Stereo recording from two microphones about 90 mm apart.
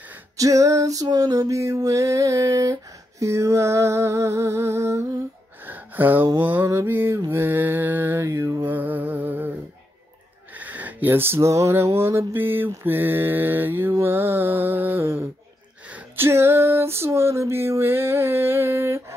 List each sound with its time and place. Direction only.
0.4 s music: 40° right (ahead or behind)
5.6 s a sound: 20° right (ahead or behind)
6.4 s music: 20° right (ahead or behind)
7.2 s mantra: 25° right (ahead or behind)
8.6 s music: 20° right (ahead or behind)
10.5 s a sound: 20° right (ahead or behind)
12.0 s music: 30° right (ahead or behind)
15.9 s a sound: 15° right (ahead or behind)
16.3 s music: 30° right (ahead or behind)